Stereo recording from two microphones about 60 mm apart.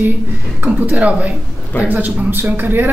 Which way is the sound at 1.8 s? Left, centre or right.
Right.